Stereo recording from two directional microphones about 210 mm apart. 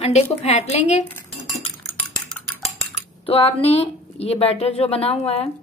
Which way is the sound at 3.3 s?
25° left (ahead or behind).